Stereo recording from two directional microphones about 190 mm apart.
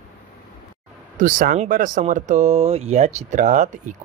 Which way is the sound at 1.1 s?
45° right (ahead or behind).